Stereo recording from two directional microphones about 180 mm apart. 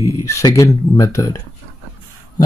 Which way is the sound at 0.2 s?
15° left (ahead or behind).